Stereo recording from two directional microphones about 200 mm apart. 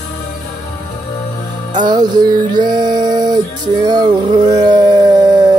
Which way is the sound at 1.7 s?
20° right (ahead or behind).